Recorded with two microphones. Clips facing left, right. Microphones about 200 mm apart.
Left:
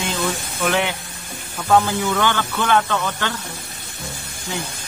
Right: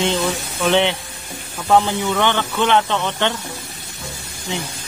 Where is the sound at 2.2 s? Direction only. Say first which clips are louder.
Right 2 dB; 20° right (ahead or behind).